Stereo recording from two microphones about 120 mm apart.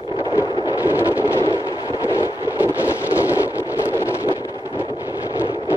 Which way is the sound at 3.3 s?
20° left (ahead or behind).